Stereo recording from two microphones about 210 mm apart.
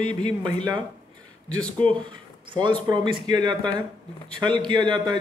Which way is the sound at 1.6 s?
5° left (ahead or behind).